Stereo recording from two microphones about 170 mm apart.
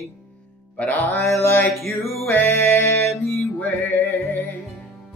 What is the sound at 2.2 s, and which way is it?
Mantra, 15° left (ahead or behind).